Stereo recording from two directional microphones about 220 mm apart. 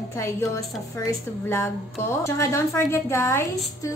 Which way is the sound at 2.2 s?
15° left (ahead or behind).